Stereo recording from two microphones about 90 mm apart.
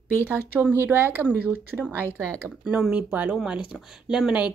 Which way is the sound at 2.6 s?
15° right (ahead or behind).